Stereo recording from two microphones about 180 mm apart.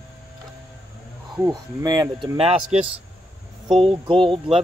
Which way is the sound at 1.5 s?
20° right (ahead or behind).